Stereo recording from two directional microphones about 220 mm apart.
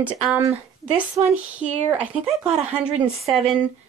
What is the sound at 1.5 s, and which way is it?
Speech, 5° right (ahead or behind).